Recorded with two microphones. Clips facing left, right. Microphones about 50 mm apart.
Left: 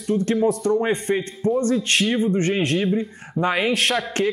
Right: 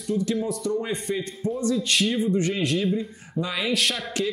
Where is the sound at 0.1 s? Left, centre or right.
Left.